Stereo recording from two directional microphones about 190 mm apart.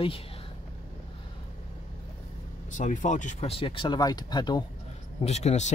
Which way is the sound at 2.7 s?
40° left (ahead or behind).